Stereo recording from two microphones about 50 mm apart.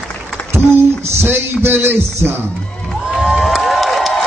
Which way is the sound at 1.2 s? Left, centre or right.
Right.